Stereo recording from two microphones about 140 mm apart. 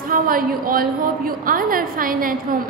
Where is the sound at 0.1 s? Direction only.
90° right.